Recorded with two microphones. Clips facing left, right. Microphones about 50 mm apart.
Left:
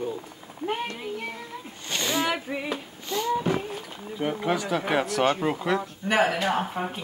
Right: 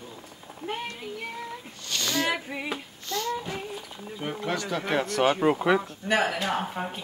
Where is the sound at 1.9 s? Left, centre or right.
Left.